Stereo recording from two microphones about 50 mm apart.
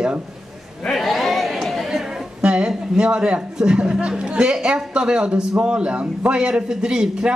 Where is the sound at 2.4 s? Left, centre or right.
Right.